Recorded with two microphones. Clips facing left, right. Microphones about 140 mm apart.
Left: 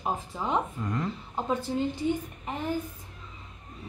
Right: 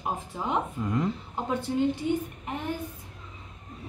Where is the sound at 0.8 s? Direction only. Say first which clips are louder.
Right 3 dB; 10° right (ahead or behind).